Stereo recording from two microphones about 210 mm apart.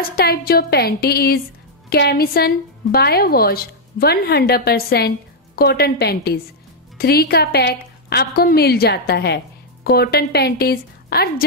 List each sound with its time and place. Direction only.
0.0 s a woman's voice: 45° left (ahead or behind)